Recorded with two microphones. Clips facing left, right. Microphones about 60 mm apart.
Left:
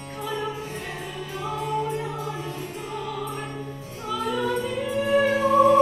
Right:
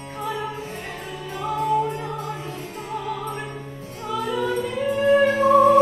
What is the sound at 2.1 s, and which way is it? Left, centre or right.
Music, right.